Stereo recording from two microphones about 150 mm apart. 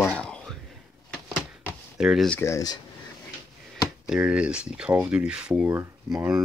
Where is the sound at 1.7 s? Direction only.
5° right (ahead or behind).